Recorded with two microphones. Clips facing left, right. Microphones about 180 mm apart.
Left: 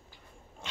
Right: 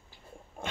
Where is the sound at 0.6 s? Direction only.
55° right (ahead or behind).